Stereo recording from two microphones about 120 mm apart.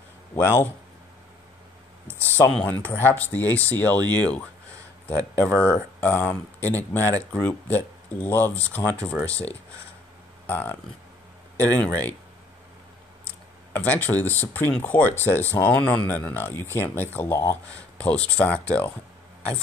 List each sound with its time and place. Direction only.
0.4 s speech: 20° left (ahead or behind)
2.5 s speech: 15° left (ahead or behind)
5.4 s speech: 15° left (ahead or behind)
10.4 s speech: 15° left (ahead or behind)
13.7 s speech: 15° left (ahead or behind)
17.9 s speech: 10° left (ahead or behind)